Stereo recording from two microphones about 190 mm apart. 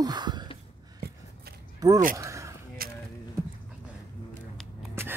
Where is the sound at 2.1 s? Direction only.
15° right (ahead or behind).